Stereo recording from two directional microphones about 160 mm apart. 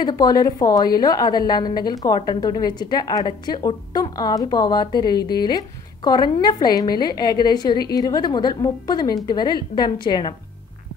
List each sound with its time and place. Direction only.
0.0 s a woman's voice: 25° left (ahead or behind)